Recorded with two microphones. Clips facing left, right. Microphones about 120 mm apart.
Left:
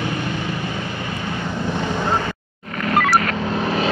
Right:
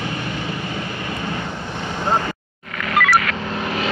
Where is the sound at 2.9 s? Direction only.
35° left (ahead or behind).